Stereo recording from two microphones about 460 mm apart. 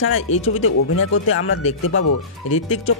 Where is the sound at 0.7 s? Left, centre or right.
Left.